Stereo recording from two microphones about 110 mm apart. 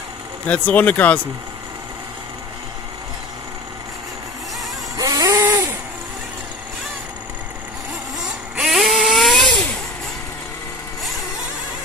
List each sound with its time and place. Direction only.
0.5 s speech: 15° left (ahead or behind)
4.9 s vehicle: 30° right (ahead or behind)
8.2 s vehicle: 5° right (ahead or behind)